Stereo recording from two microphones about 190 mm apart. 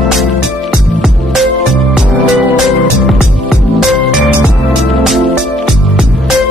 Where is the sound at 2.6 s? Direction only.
Centre (ahead or behind).